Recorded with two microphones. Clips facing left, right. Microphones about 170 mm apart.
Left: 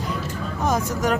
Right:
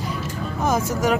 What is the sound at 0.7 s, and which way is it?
Speech, centre (ahead or behind).